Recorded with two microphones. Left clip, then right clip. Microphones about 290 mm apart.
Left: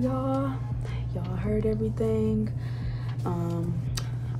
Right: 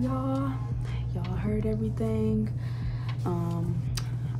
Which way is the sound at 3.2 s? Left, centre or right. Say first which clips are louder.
Left 1 dB; centre.